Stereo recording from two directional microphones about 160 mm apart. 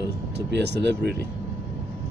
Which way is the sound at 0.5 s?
90° right.